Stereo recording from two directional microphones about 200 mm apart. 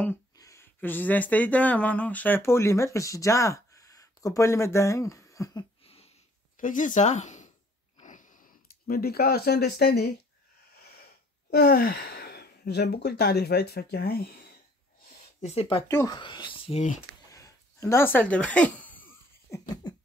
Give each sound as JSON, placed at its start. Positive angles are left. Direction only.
{"t": 0.0, "sound": "speech", "side_deg": 15}
{"t": 5.9, "sound": "a sound", "side_deg": 30}
{"t": 11.5, "sound": "speech", "side_deg": 50}
{"t": 15.4, "sound": "speech", "side_deg": 30}
{"t": 15.9, "sound": "speech", "side_deg": 15}
{"t": 17.3, "sound": "a sound", "side_deg": 15}